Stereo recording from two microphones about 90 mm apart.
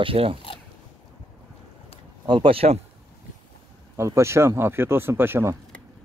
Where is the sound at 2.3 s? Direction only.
75° right (ahead or behind).